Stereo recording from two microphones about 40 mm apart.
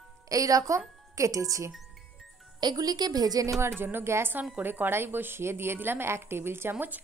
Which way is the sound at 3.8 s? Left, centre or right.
Right.